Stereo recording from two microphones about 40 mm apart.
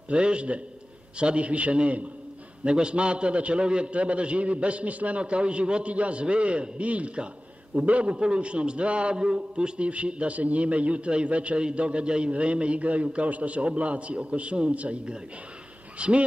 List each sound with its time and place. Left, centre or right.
0.1 s a man's voice: right